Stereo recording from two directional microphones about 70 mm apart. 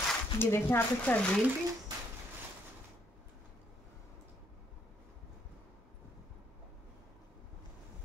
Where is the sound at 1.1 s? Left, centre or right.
Left.